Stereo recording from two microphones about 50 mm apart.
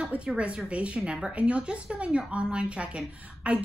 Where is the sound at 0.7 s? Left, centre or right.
Right.